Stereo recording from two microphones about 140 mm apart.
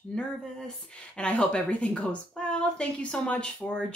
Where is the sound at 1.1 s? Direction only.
10° left (ahead or behind).